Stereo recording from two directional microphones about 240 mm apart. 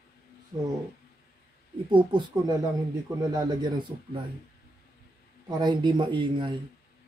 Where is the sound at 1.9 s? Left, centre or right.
Centre.